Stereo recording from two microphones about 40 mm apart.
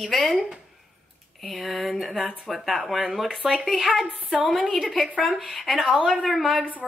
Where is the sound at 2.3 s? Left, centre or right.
Centre.